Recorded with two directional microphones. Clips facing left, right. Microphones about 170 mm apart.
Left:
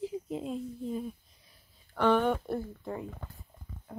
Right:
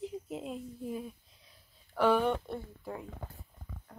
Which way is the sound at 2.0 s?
5° right (ahead or behind).